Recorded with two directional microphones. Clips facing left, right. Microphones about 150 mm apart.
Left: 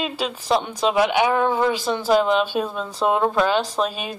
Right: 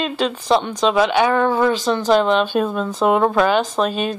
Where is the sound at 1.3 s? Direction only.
65° right (ahead or behind).